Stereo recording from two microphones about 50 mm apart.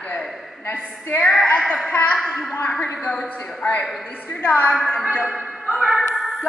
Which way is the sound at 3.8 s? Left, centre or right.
Centre.